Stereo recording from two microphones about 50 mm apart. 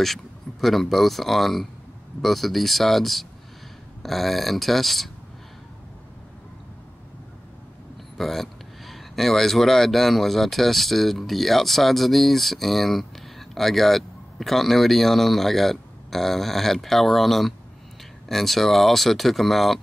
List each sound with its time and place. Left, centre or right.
0.0 s speech: centre
8.2 s speech: centre